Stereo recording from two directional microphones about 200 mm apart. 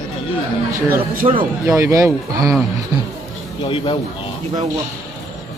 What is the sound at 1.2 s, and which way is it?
Speech, 30° right (ahead or behind).